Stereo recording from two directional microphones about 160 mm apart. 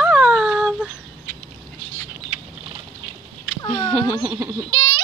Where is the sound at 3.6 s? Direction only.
30° left (ahead or behind).